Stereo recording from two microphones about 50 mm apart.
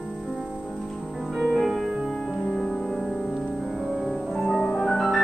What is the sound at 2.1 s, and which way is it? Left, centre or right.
Music, centre.